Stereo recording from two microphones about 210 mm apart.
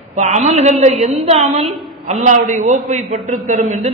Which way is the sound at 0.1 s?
35° right (ahead or behind).